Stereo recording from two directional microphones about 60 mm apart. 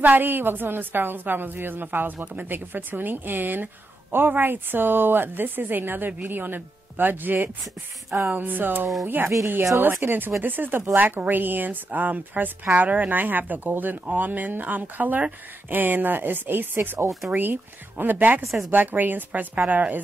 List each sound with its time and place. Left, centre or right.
0.0 s a woman's voice: right
8.1 s a sound: right
8.4 s a woman's voice: right